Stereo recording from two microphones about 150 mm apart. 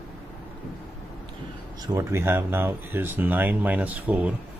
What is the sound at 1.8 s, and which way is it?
Speech, 20° right (ahead or behind).